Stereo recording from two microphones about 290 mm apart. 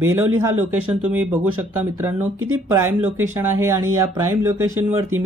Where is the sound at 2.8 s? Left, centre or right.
Centre.